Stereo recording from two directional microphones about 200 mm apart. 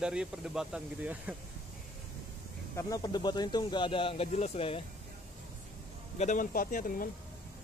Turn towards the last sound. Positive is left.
turn(degrees=45)  # may be behind; listen again after turning